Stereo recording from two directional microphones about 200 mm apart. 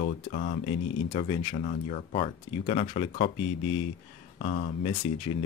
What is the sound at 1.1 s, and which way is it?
Speech, 25° left (ahead or behind).